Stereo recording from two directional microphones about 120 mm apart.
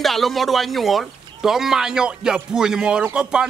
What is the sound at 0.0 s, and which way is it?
Speech, centre (ahead or behind).